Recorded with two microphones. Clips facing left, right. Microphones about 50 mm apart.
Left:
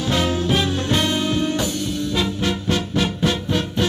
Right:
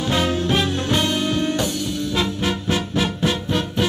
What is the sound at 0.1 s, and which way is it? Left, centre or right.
Music, centre.